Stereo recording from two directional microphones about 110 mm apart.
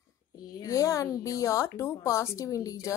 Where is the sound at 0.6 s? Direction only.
30° left (ahead or behind).